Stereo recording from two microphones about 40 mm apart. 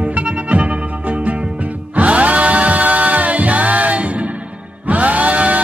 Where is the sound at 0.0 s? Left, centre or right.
Right.